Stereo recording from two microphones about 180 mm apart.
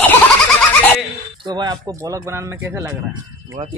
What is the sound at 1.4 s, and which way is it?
Speech, 25° right (ahead or behind).